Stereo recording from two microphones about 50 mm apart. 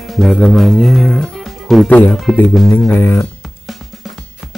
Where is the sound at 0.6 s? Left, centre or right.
Centre.